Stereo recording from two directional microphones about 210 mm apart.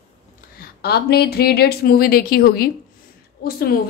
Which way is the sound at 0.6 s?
50° left (ahead or behind).